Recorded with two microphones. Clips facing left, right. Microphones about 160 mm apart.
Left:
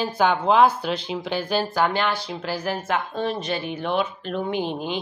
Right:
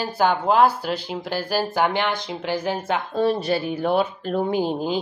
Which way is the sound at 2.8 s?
30° right (ahead or behind).